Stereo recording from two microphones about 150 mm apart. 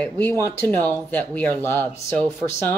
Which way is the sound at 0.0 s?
10° left (ahead or behind).